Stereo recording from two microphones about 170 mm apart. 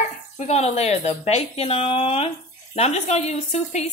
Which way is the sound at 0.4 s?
40° left (ahead or behind).